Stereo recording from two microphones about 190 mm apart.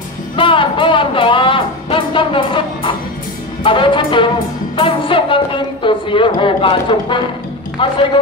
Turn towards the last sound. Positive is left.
turn(degrees=25)  # may be behind; listen again after turning